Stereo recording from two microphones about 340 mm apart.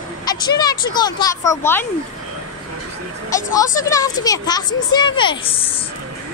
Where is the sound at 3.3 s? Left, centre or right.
Centre.